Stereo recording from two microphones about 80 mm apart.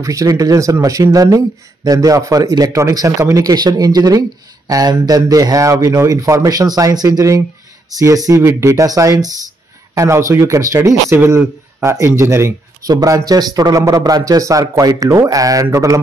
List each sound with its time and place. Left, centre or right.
0.0 s speech: right
3.5 s speech: right
12.9 s speech: right